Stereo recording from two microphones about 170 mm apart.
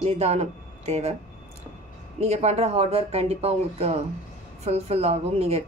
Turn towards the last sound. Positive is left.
turn(degrees=-40)  # may be behind; listen again after turning